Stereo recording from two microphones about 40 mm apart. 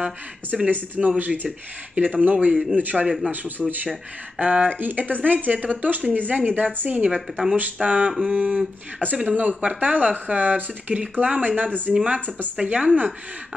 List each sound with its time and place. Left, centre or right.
0.7 s speech: right
3.3 s speech: right
3.6 s speech: right
4.7 s speech: right
7.2 s speech: centre
7.5 s speech: right